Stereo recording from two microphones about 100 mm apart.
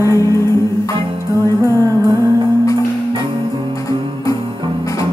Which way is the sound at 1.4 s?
30° right (ahead or behind).